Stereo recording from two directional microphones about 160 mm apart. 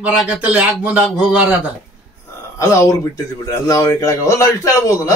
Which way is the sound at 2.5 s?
20° left (ahead or behind).